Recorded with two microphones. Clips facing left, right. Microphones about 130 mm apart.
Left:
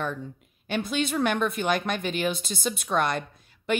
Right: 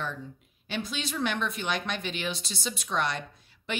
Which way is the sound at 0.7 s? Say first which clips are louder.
Left 7 dB; 50° left (ahead or behind).